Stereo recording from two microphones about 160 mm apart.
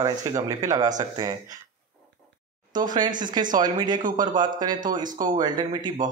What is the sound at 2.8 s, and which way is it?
Speech, 25° right (ahead or behind).